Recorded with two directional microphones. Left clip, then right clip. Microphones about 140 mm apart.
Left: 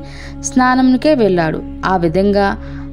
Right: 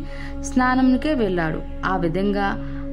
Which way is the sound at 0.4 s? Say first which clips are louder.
Left 7 dB; 45° left (ahead or behind).